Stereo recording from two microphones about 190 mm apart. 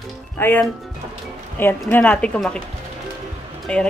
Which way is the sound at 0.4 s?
10° left (ahead or behind).